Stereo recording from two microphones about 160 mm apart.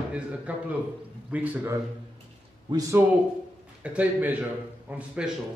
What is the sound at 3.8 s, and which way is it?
A man's voice, 10° right (ahead or behind).